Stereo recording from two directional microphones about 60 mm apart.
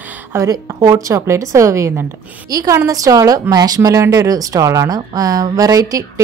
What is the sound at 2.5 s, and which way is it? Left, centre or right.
Speech, right.